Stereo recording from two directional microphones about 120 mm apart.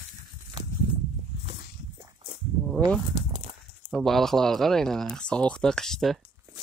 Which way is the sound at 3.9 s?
Centre (ahead or behind).